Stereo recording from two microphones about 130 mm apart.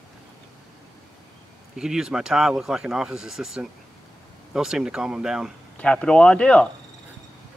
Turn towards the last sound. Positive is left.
turn(degrees=10)  # may be behind; listen again after turning